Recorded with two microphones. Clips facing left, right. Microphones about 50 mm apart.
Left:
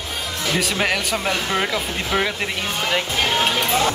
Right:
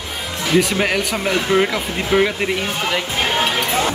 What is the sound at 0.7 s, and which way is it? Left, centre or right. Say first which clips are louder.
Speech: right 2 dB; centre.